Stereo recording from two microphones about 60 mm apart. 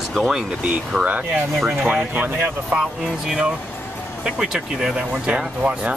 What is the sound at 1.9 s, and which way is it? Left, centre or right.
Speech, right.